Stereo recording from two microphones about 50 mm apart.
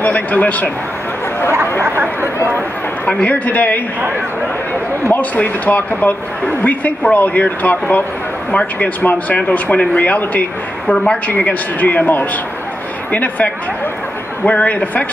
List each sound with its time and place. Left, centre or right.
0.0 s speech: left
1.8 s speech: right
3.2 s speech: left
5.1 s speech: left